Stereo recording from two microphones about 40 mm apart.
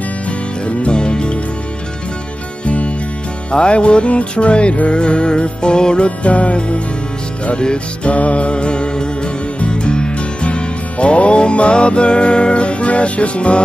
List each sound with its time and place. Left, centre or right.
0.7 s music: left
2.6 s music: left